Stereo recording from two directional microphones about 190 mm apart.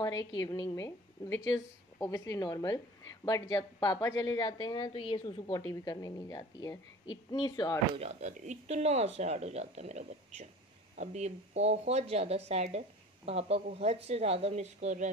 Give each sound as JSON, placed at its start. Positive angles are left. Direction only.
{"t": 0.4, "sound": "a woman's voice", "side_deg": 20}
{"t": 7.9, "sound": "speech", "side_deg": -35}